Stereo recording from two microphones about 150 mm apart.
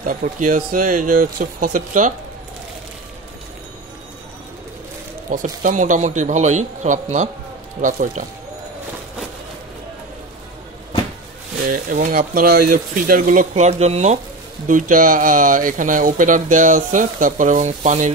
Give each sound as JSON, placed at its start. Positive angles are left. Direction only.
{"t": 0.0, "sound": "speech", "side_deg": -65}
{"t": 5.3, "sound": "speech", "side_deg": -65}
{"t": 11.6, "sound": "speech", "side_deg": -60}
{"t": 14.7, "sound": "speech", "side_deg": -60}